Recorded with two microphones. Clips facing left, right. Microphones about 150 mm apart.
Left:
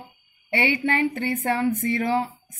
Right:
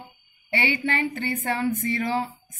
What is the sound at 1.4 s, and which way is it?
Speech, 55° left (ahead or behind).